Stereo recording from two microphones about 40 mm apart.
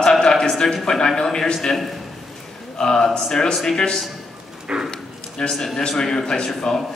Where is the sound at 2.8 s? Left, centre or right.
Centre.